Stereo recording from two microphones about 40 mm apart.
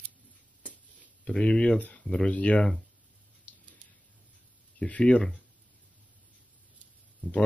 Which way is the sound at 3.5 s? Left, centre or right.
Left.